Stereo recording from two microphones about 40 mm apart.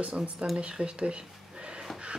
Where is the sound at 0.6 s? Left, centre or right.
Right.